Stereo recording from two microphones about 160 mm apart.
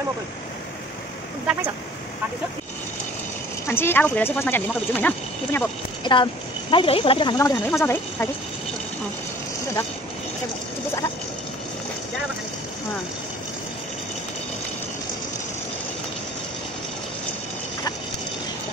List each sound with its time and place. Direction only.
3.6 s speech: 15° left (ahead or behind)
6.0 s speech: 30° left (ahead or behind)
7.3 s speech: 20° left (ahead or behind)